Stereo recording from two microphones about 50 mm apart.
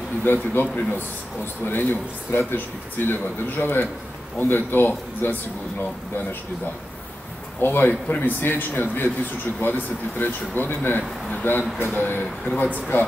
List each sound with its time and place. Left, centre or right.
0.2 s speech: left
7.6 s speech: left
12.9 s speech: left